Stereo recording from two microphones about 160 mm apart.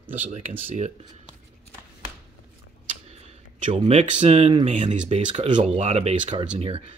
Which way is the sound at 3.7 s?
40° right (ahead or behind).